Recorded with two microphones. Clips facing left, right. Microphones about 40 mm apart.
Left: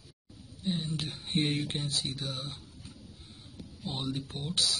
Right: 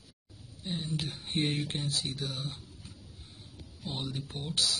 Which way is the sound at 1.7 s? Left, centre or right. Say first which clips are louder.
Even; left.